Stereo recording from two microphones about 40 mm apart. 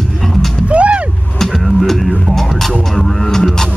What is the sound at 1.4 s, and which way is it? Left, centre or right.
Music, centre.